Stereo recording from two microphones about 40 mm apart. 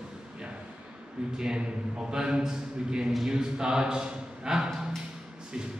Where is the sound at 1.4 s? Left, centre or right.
Centre.